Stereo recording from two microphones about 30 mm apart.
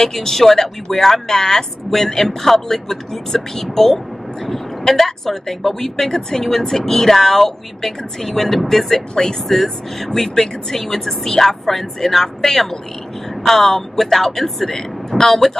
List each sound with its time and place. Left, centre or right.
0.0 s speech: centre
9.1 s speech: centre
9.5 s a woman's voice: centre